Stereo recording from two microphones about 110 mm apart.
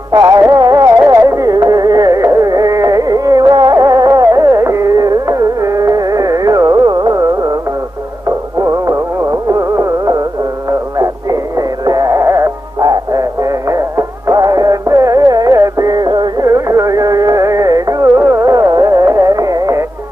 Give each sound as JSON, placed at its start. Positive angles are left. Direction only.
{"t": 0.1, "sound": "music", "side_deg": -35}
{"t": 0.6, "sound": "carnatic music", "side_deg": -35}
{"t": 8.5, "sound": "music", "side_deg": -30}
{"t": 16.4, "sound": "music", "side_deg": -30}